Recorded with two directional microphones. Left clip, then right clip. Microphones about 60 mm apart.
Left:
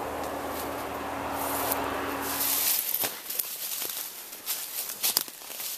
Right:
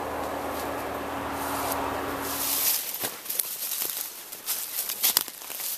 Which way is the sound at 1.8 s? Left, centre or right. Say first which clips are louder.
Right 1 dB; left.